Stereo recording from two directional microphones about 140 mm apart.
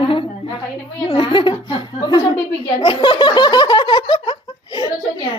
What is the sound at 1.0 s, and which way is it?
Speech, 35° left (ahead or behind).